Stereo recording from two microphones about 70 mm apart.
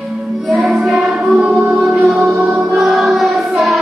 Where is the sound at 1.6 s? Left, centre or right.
Right.